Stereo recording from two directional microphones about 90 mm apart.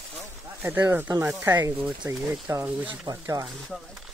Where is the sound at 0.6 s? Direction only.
25° right (ahead or behind).